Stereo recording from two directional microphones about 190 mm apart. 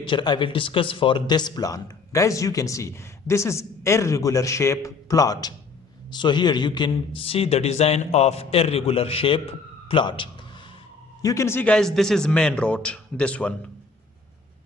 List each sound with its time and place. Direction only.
0.0 s a man's voice: 25° left (ahead or behind)
11.2 s a man's voice: 15° left (ahead or behind)